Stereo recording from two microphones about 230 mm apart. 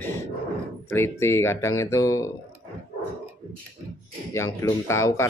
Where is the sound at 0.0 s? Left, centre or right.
Centre.